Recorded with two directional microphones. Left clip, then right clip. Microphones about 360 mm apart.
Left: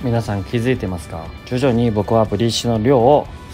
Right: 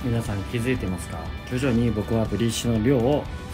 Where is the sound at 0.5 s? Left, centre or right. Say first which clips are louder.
Left 7 dB; left.